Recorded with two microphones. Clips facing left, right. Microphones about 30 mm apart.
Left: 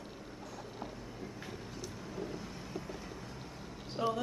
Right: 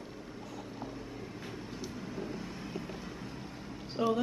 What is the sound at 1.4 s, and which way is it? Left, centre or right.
Vehicle, right.